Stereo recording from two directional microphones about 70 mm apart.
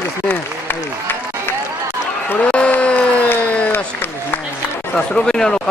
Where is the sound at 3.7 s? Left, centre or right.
Left.